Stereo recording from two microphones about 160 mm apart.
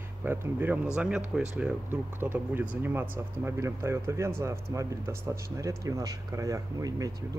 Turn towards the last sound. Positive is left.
turn(degrees=-20)  # may be behind; listen again after turning